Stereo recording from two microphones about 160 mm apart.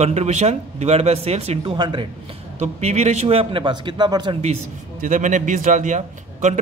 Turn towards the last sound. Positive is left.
turn(degrees=-50)  # may be behind; listen again after turning